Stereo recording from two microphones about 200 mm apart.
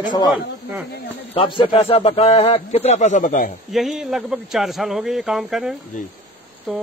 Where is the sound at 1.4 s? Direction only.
25° left (ahead or behind); by 3.5 s 40° left (ahead or behind).